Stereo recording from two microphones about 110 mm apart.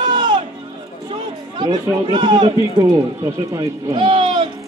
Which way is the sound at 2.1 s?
45° right (ahead or behind).